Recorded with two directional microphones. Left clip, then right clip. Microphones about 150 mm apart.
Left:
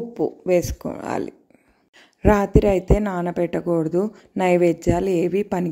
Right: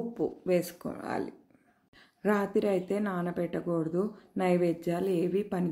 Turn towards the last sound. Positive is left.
turn(degrees=55)  # may be behind; listen again after turning